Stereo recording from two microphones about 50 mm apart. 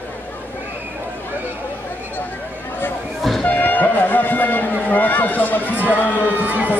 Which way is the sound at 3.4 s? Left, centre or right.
Left.